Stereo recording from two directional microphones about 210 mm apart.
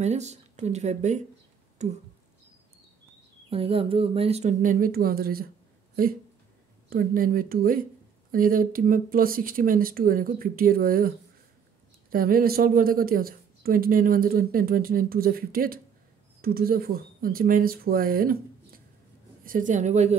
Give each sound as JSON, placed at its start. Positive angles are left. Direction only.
{"t": 0.0, "sound": "speech", "side_deg": -30}
{"t": 1.8, "sound": "a sound", "side_deg": -35}
{"t": 3.4, "sound": "speech", "side_deg": -25}
{"t": 6.9, "sound": "speech", "side_deg": -45}